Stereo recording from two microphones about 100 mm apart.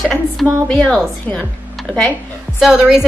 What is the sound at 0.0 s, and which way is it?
A woman's voice, 5° left (ahead or behind).